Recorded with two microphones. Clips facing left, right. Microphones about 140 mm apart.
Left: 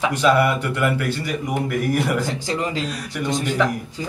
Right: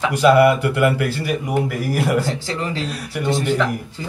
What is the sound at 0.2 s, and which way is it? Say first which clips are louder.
A man's voice: right 6 dB; 10° right (ahead or behind).